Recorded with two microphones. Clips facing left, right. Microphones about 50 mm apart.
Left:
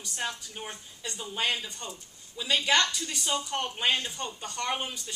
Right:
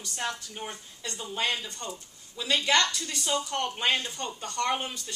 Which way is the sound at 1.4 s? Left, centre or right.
Centre.